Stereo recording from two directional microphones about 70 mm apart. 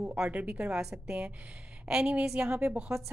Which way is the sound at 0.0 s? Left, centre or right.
Centre.